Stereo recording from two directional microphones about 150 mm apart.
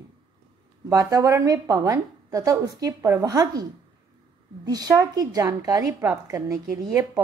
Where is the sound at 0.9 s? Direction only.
25° right (ahead or behind).